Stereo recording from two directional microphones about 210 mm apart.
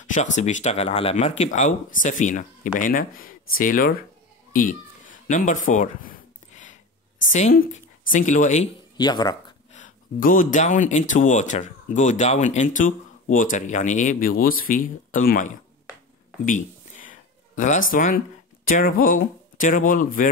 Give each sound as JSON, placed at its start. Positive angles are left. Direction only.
{"t": 0.0, "sound": "speech", "side_deg": 35}
{"t": 4.5, "sound": "cat", "side_deg": 40}
{"t": 7.5, "sound": "speech", "side_deg": 40}
{"t": 8.9, "sound": "speech", "side_deg": 20}
{"t": 9.8, "sound": "speech", "side_deg": 40}
{"t": 16.4, "sound": "a sound", "side_deg": 40}
{"t": 18.7, "sound": "speech", "side_deg": 40}